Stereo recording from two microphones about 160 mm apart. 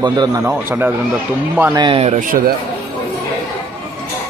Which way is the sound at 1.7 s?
30° right (ahead or behind).